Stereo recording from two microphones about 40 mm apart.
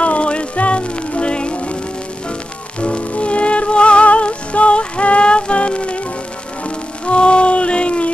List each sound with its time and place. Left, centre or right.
0.0 s music: left
2.8 s music: left
7.1 s a sound: left